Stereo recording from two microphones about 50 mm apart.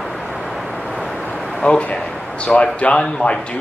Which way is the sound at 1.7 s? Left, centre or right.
Left.